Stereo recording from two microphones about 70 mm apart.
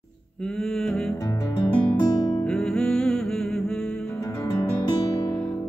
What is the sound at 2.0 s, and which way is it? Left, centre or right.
Music, left.